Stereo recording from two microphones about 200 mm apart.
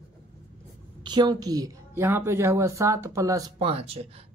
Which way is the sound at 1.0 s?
20° right (ahead or behind).